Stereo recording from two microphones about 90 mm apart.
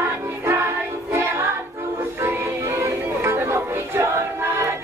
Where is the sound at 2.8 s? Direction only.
30° right (ahead or behind).